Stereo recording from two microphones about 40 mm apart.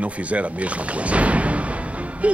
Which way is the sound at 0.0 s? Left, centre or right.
Right.